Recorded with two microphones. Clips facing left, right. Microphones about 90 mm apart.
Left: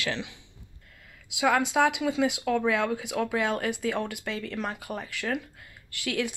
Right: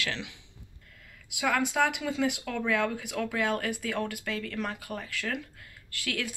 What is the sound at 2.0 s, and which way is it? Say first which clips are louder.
Speech: left 3 dB; 15° left (ahead or behind).